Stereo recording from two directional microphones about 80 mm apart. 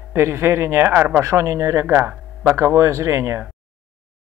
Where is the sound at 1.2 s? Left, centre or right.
Right.